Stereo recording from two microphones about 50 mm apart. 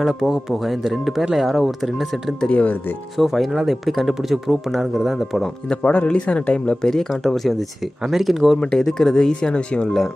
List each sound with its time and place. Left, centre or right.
0.0 s speech: centre
2.5 s speech: left
3.2 s speech: centre
5.7 s speech: left
7.1 s speech: centre
8.5 s speech: centre